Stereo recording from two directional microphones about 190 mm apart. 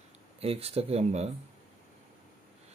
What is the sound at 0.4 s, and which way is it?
Speech, 30° right (ahead or behind).